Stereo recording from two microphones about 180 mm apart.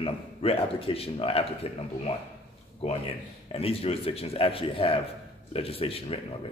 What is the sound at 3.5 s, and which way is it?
A man's voice, 35° left (ahead or behind).